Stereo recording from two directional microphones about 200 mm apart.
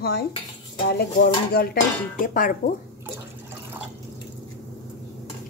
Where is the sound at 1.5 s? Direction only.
50° left (ahead or behind).